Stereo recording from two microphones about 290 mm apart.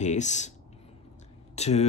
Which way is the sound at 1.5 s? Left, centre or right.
Left.